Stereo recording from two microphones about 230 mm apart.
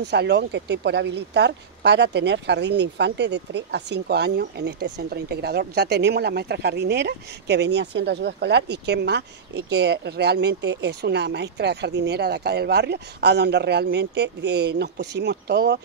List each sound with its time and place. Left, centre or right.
0.1 s speech: right